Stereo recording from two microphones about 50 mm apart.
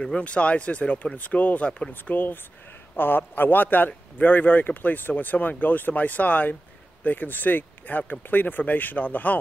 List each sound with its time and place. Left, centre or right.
0.2 s a man's voice: left